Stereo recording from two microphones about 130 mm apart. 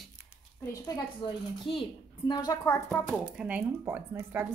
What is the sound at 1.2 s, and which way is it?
A woman's voice, 40° left (ahead or behind).